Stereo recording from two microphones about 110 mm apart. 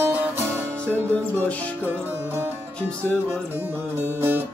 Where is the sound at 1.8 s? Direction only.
20° right (ahead or behind).